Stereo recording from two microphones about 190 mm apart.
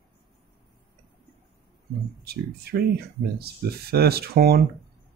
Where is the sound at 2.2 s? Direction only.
55° right (ahead or behind).